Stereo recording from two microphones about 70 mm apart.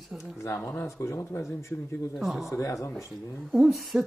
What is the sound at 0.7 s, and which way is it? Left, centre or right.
Speech, left.